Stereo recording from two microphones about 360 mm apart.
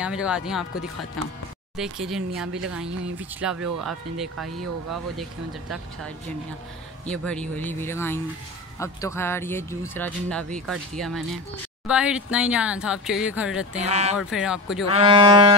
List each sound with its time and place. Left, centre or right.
0.0 s speech: centre
1.8 s speech: centre
7.1 s speech: centre
13.7 s speech: centre
14.1 s speech: centre
14.9 s speech: centre